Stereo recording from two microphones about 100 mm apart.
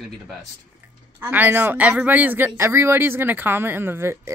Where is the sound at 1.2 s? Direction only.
20° right (ahead or behind).